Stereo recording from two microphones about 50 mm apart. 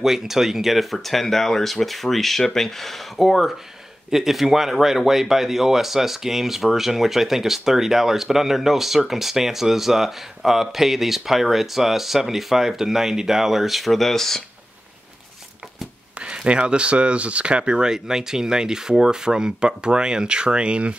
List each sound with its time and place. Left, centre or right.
0.0 s speech: centre
16.2 s speech: right